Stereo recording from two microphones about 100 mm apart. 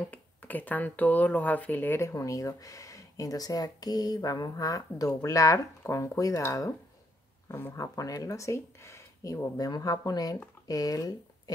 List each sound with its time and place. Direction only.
0.1 s speech: 15° left (ahead or behind); by 6.7 s 35° left (ahead or behind)
7.4 s speech: 25° left (ahead or behind)
7.7 s speech: 35° left (ahead or behind)